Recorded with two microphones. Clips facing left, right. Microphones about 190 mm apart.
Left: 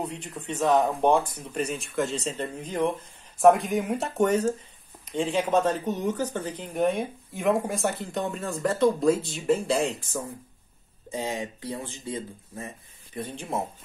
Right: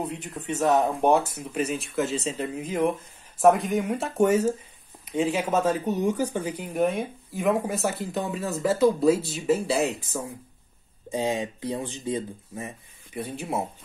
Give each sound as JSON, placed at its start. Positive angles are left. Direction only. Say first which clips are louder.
{"t": 0.0, "sound": "speech", "louder": "right 2 dB", "side_deg": 0}